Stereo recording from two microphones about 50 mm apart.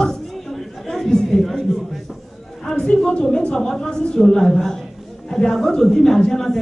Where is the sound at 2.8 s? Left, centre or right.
Left.